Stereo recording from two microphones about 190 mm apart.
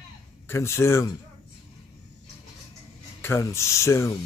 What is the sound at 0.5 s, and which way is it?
Speech, 15° left (ahead or behind).